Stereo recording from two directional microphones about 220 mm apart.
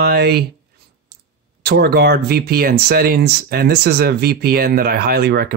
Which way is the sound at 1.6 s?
45° right (ahead or behind).